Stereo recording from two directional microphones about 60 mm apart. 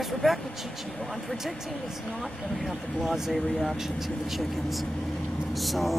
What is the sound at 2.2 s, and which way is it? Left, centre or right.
Speech, centre.